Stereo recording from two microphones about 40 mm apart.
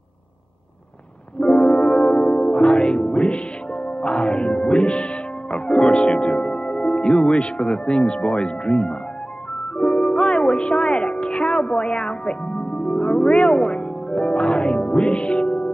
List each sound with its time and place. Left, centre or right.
1.4 s music: left
2.0 s speech: centre